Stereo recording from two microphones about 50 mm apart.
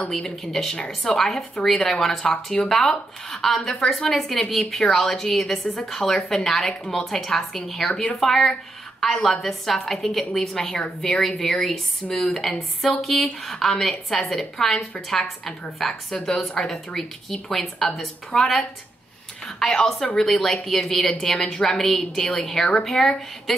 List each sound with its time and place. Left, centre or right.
0.2 s a woman's voice: centre